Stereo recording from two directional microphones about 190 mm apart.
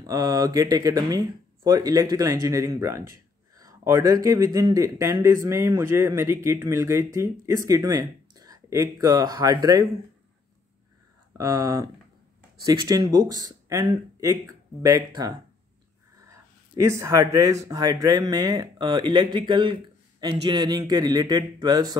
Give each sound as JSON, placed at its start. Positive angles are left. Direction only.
{"t": 0.0, "sound": "speech", "side_deg": -20}
{"t": 11.3, "sound": "speech", "side_deg": -15}